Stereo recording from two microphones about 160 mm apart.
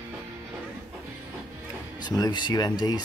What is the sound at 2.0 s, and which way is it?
Speech, 25° left (ahead or behind).